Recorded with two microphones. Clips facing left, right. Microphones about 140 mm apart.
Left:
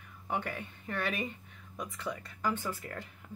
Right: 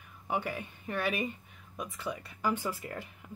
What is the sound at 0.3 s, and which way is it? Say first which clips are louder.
Speech: right 2 dB; 5° right (ahead or behind).